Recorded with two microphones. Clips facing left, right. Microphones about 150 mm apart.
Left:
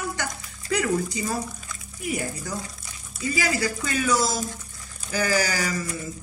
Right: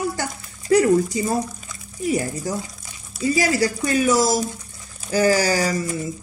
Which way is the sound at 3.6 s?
25° right (ahead or behind).